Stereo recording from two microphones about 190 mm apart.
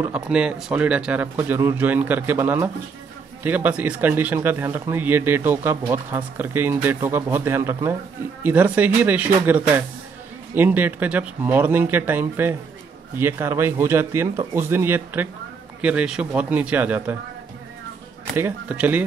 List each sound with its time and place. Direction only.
0.0 s speech: 5° right (ahead or behind)
18.3 s speech: 10° right (ahead or behind)